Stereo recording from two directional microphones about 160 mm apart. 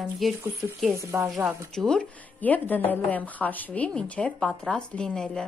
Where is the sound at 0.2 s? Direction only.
Centre (ahead or behind).